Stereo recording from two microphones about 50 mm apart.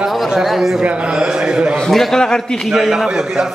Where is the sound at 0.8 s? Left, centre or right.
Centre.